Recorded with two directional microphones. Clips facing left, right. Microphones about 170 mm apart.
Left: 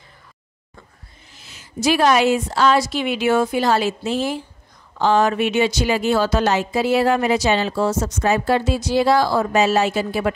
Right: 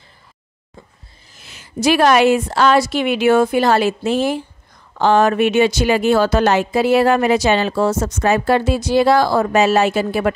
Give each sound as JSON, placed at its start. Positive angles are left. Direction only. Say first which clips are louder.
{"t": 1.4, "sound": "speech", "louder": "right 3 dB", "side_deg": -65}